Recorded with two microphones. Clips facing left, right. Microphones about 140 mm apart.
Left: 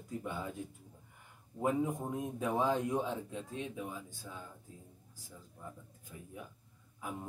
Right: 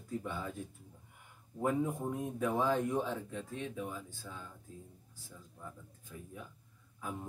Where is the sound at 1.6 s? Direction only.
20° left (ahead or behind).